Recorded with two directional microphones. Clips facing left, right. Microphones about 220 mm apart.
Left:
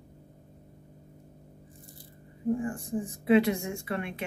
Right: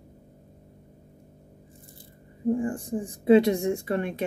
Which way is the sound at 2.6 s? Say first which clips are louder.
Right 3 dB; 30° right (ahead or behind).